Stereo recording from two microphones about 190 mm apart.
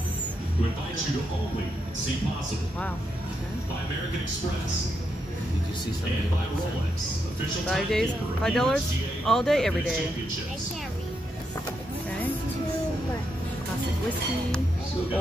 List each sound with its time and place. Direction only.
7.6 s speech: centre (ahead or behind)